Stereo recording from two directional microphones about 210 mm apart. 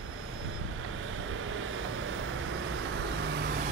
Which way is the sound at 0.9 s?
75° right (ahead or behind).